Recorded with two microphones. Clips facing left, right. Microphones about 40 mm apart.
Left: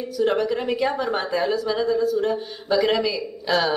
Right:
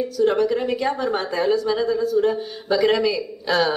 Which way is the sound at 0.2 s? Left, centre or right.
Centre.